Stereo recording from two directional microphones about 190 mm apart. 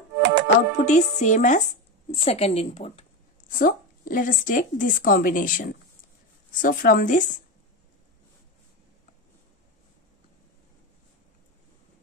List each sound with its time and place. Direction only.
0.2 s music: 70° right (ahead or behind)
0.7 s a woman's voice: 40° left (ahead or behind)
3.5 s a woman's voice: 45° left (ahead or behind)